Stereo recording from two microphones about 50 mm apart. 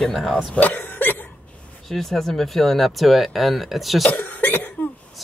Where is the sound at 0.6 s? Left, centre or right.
Left.